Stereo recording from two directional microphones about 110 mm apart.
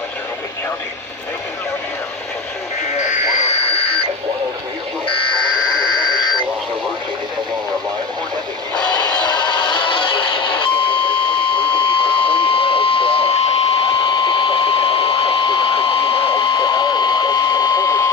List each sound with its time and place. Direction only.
3.0 s radio: 65° left (ahead or behind)
5.8 s alarm clock: 40° left (ahead or behind)
8.9 s music: 40° left (ahead or behind)